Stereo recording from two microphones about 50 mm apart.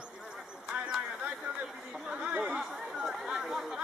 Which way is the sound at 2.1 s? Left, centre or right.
Right.